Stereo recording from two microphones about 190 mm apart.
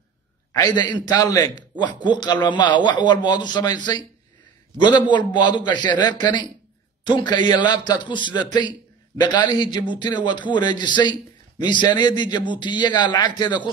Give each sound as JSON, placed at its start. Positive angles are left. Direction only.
{"t": 0.5, "sound": "a man's voice", "side_deg": 20}